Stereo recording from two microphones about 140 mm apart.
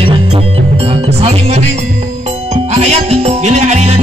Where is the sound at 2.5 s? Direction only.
50° right (ahead or behind).